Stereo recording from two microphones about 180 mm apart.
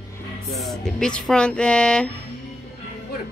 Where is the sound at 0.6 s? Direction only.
Centre (ahead or behind).